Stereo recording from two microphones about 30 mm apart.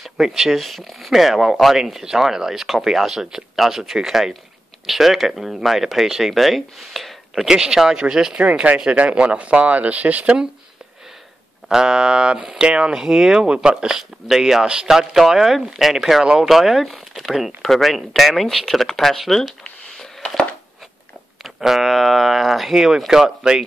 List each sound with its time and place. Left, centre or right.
0.0 s speech: centre
1.0 s speech: centre
7.3 s speech: right
8.4 s speech: right
11.7 s speech: right
13.0 s speech: centre
14.9 s speech: centre
21.4 s speech: centre